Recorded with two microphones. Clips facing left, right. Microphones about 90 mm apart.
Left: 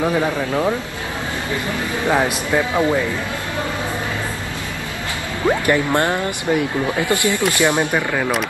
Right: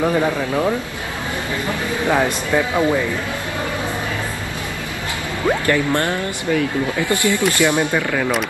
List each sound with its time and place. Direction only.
0.0 s speech: 5° left (ahead or behind)
2.0 s speech: 15° left (ahead or behind)
5.5 s speech: 20° left (ahead or behind); by 8.5 s 5° left (ahead or behind)